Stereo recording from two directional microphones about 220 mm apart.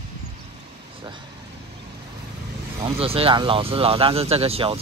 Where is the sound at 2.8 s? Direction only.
25° right (ahead or behind).